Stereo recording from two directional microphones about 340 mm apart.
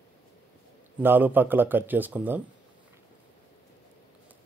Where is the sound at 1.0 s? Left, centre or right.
Centre.